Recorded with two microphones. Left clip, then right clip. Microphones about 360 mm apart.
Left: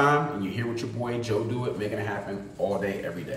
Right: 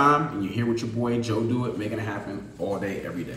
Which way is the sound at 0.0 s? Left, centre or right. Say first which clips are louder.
Right 2 dB; centre.